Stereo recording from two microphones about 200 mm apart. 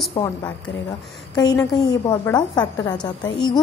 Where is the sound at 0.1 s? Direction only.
20° left (ahead or behind).